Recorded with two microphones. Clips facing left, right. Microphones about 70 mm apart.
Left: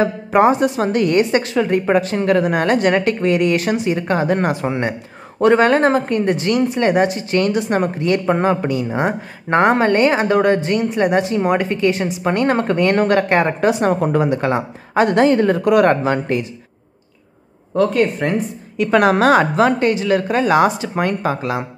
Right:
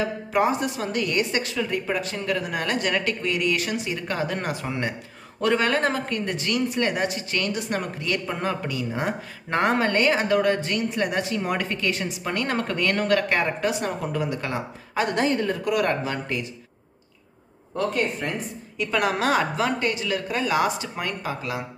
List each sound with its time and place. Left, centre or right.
0.0 s a woman's voice: left
2.6 s a woman's voice: left
15.1 s a woman's voice: left
17.7 s speech: left
18.8 s speech: left